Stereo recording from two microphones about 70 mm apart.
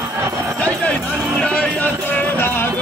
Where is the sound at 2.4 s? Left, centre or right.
Left.